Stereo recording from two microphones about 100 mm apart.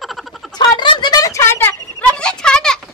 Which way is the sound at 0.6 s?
50° left (ahead or behind).